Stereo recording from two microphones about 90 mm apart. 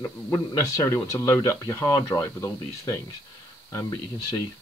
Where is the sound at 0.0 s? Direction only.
35° left (ahead or behind).